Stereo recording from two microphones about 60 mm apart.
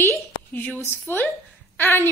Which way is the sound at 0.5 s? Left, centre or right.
Left.